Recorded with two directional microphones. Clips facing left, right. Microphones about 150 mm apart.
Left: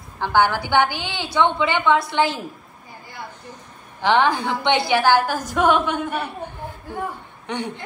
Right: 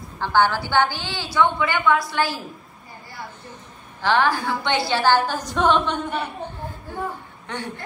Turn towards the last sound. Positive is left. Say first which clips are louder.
# left 4 dB
turn(degrees=20)  # may be behind; listen again after turning